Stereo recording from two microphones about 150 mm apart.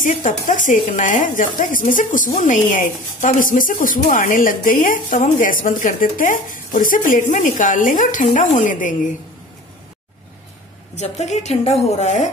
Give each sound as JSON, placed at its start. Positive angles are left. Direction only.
{"t": 0.2, "sound": "speech", "side_deg": 60}
{"t": 11.0, "sound": "a woman's voice", "side_deg": 50}